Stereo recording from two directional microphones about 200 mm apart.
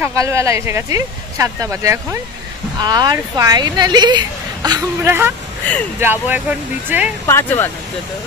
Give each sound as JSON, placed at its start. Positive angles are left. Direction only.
{"t": 0.0, "sound": "speech", "side_deg": -15}
{"t": 7.2, "sound": "speech", "side_deg": 10}